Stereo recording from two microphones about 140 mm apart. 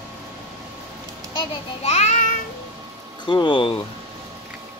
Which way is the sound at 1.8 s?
55° left (ahead or behind).